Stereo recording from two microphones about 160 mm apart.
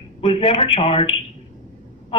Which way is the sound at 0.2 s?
35° left (ahead or behind).